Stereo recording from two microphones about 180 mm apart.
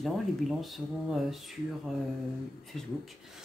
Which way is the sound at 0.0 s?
Centre (ahead or behind).